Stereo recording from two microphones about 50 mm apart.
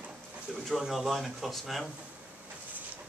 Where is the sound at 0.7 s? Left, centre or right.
Centre.